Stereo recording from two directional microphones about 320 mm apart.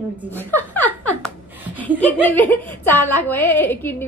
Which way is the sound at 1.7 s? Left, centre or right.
Centre.